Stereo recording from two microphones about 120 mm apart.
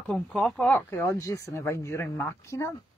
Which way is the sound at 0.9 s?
25° left (ahead or behind).